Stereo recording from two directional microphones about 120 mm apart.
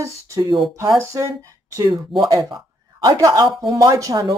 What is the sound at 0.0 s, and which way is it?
Speech, 25° right (ahead or behind).